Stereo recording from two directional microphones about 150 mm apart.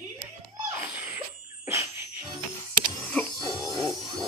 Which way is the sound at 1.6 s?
20° right (ahead or behind).